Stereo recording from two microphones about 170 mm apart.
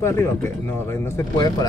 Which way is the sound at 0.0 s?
15° left (ahead or behind).